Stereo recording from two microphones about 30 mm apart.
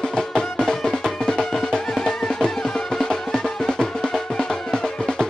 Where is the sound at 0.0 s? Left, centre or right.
Left.